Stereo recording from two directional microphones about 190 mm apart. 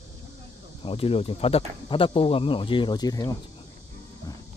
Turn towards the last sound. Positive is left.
turn(degrees=15)  # may be behind; listen again after turning